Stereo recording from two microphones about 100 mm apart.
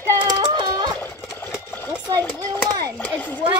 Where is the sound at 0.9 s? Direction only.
20° left (ahead or behind).